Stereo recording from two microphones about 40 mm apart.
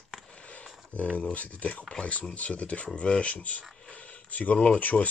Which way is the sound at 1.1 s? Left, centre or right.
Left.